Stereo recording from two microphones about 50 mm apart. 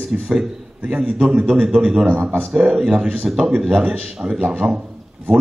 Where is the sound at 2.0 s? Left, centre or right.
Right.